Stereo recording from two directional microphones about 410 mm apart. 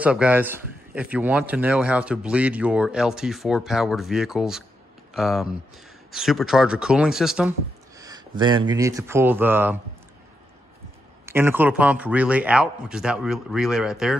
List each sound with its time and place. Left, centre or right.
0.0 s speech: centre
11.2 s speech: centre